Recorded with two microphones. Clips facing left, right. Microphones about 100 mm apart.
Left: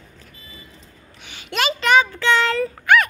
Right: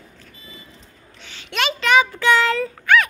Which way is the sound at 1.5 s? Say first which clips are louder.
Left 1 dB; centre (ahead or behind).